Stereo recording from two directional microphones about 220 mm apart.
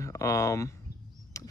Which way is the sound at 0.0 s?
15° left (ahead or behind).